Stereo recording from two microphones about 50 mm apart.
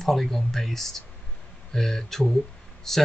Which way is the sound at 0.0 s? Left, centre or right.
Centre.